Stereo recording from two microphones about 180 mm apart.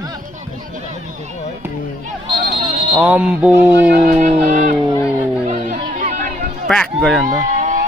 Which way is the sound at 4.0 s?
45° right (ahead or behind).